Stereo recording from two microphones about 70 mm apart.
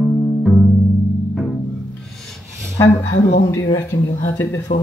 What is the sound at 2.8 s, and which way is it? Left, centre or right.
Speech, left.